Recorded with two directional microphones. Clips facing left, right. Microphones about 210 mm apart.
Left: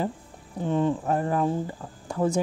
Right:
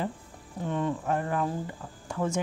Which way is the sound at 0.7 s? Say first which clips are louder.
Left 5 dB; 30° left (ahead or behind).